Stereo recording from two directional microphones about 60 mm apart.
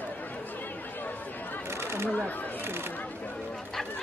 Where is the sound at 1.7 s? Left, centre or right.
Right.